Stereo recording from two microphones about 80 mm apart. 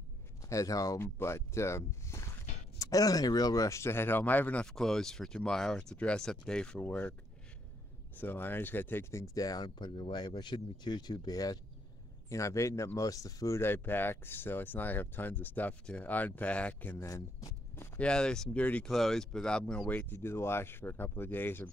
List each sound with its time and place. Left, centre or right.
0.4 s speech: left
0.9 s speech: left
4.6 s speech: centre
8.2 s speech: left
9.2 s speech: left
12.3 s speech: left
13.6 s speech: left
17.0 s speech: left
17.9 s speech: centre
18.9 s speech: centre
19.9 s speech: left